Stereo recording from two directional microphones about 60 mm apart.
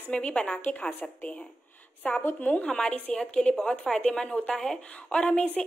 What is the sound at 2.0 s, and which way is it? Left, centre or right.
A woman's voice, left.